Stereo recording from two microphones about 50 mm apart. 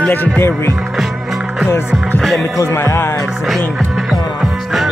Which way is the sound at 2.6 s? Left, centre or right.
Left.